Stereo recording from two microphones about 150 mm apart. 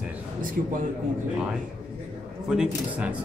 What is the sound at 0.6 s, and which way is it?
Speech, 60° right (ahead or behind).